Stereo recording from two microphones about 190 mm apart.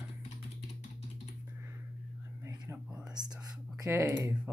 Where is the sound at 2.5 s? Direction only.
20° right (ahead or behind).